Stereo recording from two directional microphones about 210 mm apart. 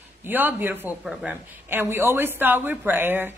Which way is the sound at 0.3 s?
10° right (ahead or behind).